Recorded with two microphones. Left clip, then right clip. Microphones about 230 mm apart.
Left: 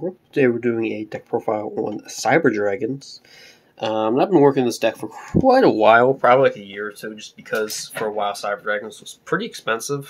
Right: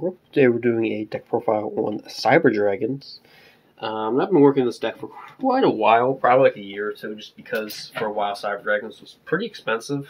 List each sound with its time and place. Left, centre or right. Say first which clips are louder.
0.0 s speech: right 1 dB; centre
3.8 s speech: left 4 dB; left
6.7 s speech: right 1 dB; left